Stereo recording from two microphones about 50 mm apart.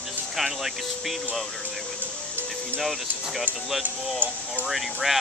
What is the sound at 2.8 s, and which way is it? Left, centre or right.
Speech, centre.